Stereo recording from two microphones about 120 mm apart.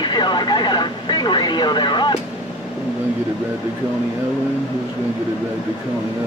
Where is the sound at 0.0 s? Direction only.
40° left (ahead or behind).